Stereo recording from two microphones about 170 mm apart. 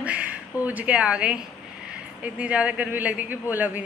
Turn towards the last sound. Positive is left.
turn(degrees=-10)  # may be behind; listen again after turning